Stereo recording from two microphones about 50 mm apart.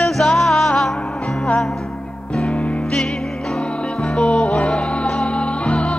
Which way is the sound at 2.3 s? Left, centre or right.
Left.